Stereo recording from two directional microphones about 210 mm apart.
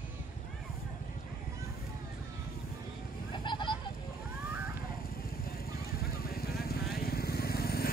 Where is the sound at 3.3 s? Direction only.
20° left (ahead or behind).